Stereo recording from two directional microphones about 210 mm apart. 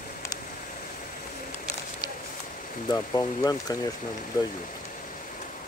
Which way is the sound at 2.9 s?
15° left (ahead or behind).